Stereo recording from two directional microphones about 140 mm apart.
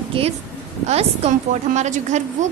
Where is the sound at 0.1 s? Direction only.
40° right (ahead or behind).